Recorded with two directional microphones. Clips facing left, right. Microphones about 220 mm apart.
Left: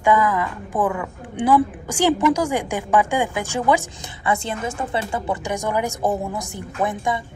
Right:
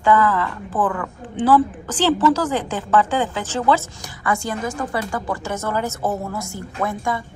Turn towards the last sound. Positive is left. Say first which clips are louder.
# left 1 dB
turn(degrees=20)  # may be behind; listen again after turning